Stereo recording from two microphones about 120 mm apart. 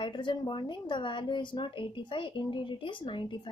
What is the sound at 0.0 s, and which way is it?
A woman's voice, 40° left (ahead or behind).